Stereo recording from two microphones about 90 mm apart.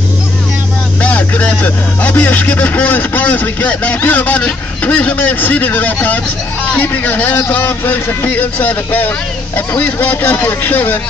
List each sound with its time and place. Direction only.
1.0 s a man's voice: 15° left (ahead or behind)